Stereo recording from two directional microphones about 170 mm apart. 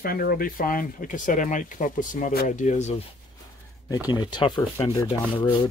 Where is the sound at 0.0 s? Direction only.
65° left (ahead or behind); by 3.0 s 45° left (ahead or behind).